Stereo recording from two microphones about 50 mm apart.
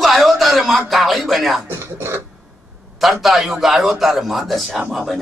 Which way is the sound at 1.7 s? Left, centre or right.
Right.